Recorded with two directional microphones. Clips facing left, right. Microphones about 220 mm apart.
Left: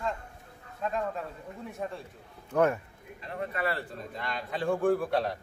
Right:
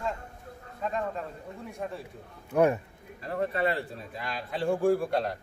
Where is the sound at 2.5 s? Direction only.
15° right (ahead or behind).